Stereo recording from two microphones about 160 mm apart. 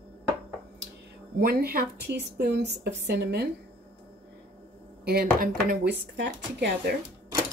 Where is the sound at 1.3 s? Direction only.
70° right (ahead or behind); by 3.5 s 90° right.